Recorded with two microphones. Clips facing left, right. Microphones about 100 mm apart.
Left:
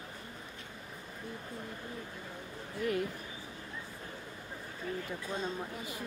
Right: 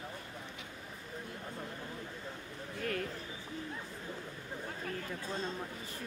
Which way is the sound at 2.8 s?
20° left (ahead or behind).